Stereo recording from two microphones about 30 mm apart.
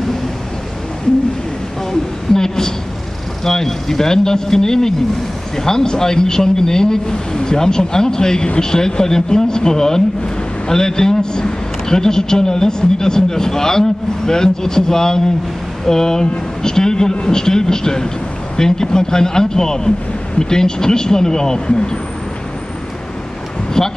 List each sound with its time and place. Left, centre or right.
1.9 s a sound: centre
3.4 s a man's voice: centre
23.8 s a man's voice: left